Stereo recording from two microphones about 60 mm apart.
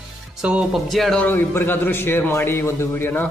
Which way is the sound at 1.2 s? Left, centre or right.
Left.